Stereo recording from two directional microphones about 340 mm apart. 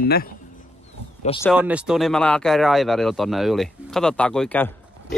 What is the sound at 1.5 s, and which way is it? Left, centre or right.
Speech, centre.